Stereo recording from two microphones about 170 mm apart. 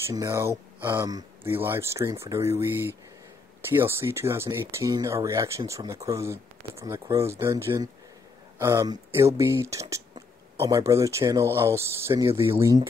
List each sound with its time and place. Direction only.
0.0 s speech: 15° right (ahead or behind)